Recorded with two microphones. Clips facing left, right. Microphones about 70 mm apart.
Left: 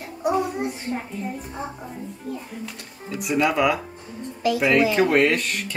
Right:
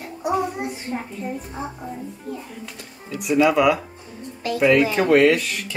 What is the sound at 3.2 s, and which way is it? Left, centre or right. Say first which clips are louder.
A child's voice: right 4 dB; centre.